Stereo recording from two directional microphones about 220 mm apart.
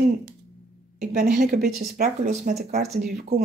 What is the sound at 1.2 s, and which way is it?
Speech, 45° right (ahead or behind).